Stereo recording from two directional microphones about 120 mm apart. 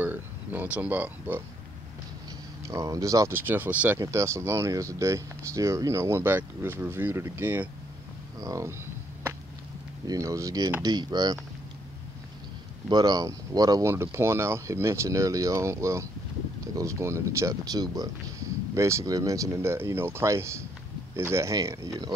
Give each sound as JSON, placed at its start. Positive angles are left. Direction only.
{"t": 0.0, "sound": "speech", "side_deg": -15}
{"t": 2.7, "sound": "speech", "side_deg": -30}
{"t": 10.0, "sound": "speech", "side_deg": -25}
{"t": 10.8, "sound": "mechanisms", "side_deg": -35}
{"t": 12.9, "sound": "speech", "side_deg": -35}